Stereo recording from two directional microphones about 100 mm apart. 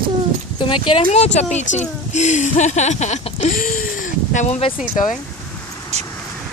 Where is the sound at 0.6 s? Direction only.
60° left (ahead or behind); by 1.5 s 90° left.